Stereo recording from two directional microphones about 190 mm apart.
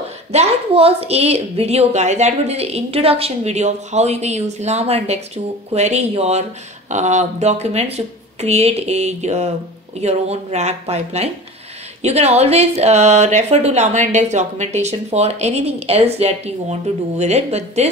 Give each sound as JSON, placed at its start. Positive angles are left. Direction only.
{"t": 0.3, "sound": "a woman's voice", "side_deg": -35}